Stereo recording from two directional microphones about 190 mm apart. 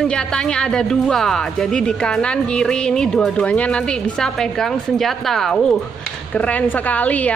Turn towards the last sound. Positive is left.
turn(degrees=10)  # may be behind; listen again after turning